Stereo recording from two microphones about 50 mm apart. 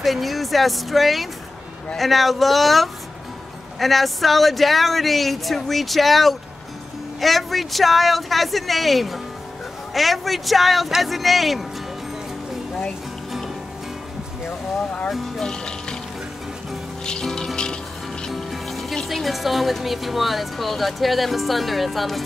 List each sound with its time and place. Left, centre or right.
0.0 s speech: centre
15.0 s music: centre
15.4 s music: centre
17.0 s music: centre
18.3 s music: centre
19.0 s speech: centre